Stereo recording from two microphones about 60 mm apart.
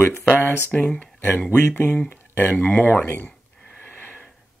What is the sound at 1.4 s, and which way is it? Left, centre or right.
Speech, left.